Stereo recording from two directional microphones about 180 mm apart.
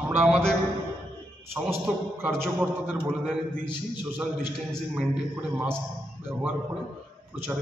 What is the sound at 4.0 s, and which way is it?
A man's voice, 10° right (ahead or behind).